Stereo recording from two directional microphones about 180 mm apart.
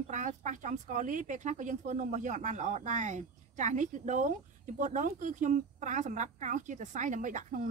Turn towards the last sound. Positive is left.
turn(degrees=-45)  # may be behind; listen again after turning